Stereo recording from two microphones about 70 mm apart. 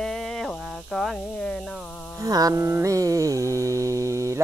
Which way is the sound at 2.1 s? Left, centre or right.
Right.